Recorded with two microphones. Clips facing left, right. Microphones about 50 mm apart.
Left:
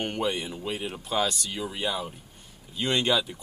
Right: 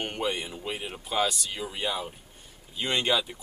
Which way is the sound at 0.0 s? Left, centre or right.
Centre.